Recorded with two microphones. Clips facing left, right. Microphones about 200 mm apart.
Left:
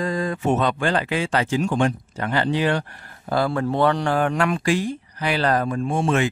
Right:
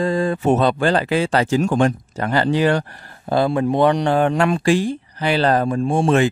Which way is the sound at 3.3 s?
20° right (ahead or behind).